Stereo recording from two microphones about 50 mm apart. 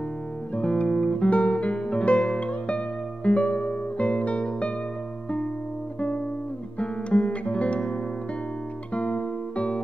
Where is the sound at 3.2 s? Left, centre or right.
Left.